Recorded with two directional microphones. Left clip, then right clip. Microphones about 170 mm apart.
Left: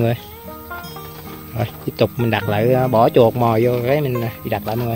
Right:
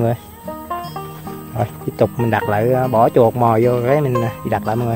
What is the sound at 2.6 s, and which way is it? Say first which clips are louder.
Speech: even; 10° left (ahead or behind).